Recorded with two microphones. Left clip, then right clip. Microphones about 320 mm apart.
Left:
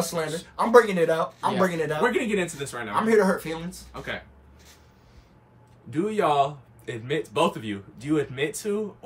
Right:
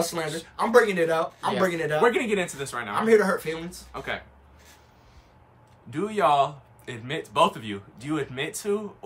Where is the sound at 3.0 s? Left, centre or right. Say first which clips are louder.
Even; centre.